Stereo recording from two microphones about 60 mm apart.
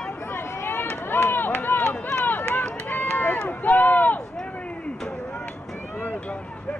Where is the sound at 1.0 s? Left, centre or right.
Left.